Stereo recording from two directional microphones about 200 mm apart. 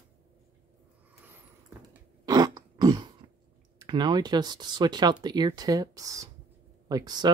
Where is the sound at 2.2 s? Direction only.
20° right (ahead or behind).